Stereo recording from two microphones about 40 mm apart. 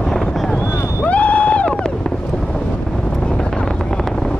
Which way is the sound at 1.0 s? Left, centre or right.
Left.